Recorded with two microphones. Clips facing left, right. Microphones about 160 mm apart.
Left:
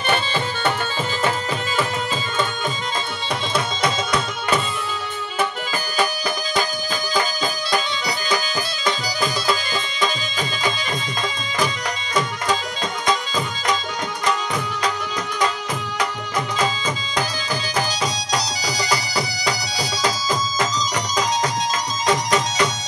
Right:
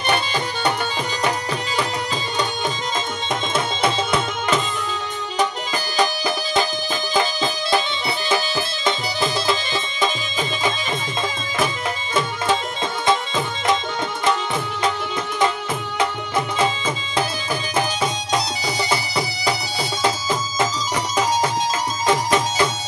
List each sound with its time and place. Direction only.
0.1 s music: 15° right (ahead or behind)
3.8 s music: 25° right (ahead or behind)
5.9 s music: 20° right (ahead or behind)
8.8 s music: 25° right (ahead or behind)
11.5 s music: 25° right (ahead or behind)
16.0 s music: 25° right (ahead or behind)